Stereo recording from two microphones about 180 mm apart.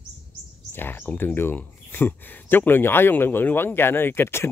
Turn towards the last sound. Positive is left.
turn(degrees=15)  # may be behind; listen again after turning